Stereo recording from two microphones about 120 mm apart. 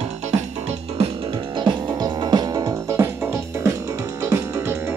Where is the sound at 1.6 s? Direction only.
40° right (ahead or behind).